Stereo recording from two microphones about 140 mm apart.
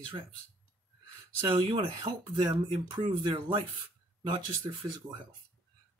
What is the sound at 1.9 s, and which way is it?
Speech, 30° right (ahead or behind).